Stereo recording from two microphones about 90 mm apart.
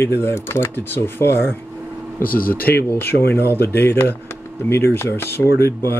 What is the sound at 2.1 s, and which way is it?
Speech, 20° left (ahead or behind).